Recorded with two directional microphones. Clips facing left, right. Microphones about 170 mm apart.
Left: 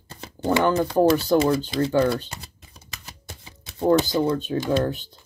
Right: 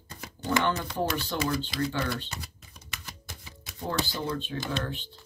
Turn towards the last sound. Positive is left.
turn(degrees=40)  # may be behind; listen again after turning